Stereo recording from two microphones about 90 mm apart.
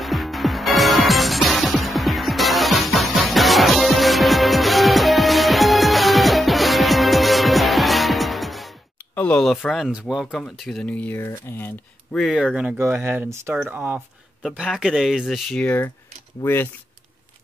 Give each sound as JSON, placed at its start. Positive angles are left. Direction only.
{"t": 0.0, "sound": "music", "side_deg": 0}
{"t": 9.1, "sound": "a sound", "side_deg": 15}
{"t": 9.7, "sound": "speech", "side_deg": -5}
{"t": 10.8, "sound": "speech", "side_deg": 15}
{"t": 11.1, "sound": "speech", "side_deg": 25}
{"t": 12.1, "sound": "speech", "side_deg": 5}
{"t": 12.7, "sound": "speech", "side_deg": -25}
{"t": 14.6, "sound": "speech", "side_deg": -10}
{"t": 15.6, "sound": "speech", "side_deg": 20}